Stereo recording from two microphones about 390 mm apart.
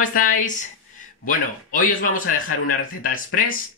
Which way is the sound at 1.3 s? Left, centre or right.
Left.